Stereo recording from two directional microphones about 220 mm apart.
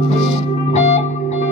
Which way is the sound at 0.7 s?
30° left (ahead or behind).